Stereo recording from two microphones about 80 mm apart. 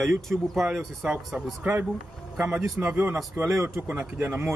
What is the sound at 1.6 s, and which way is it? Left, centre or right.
A man's voice, centre.